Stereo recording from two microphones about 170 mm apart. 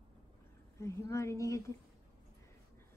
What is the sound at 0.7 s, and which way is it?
A woman's voice, 15° left (ahead or behind).